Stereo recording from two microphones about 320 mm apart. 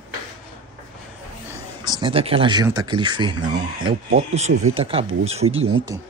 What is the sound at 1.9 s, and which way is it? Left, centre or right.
Speech, centre.